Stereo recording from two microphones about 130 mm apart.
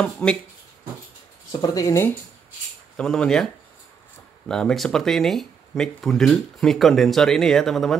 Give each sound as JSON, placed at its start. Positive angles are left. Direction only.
{"t": 0.0, "sound": "speech", "side_deg": 5}
{"t": 1.5, "sound": "speech", "side_deg": 30}
{"t": 3.0, "sound": "speech", "side_deg": 5}
{"t": 4.5, "sound": "speech", "side_deg": 5}